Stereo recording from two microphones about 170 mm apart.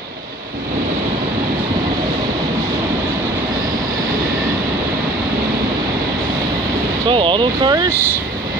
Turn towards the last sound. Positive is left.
turn(degrees=-20)  # may be behind; listen again after turning